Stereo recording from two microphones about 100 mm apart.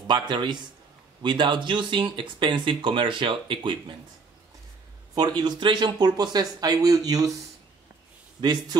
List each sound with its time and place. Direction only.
0.3 s speech: 50° right (ahead or behind)
5.1 s speech: 45° right (ahead or behind)
8.4 s speech: 45° right (ahead or behind)